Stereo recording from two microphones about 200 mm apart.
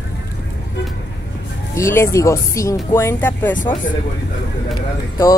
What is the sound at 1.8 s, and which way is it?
Speech, 15° left (ahead or behind).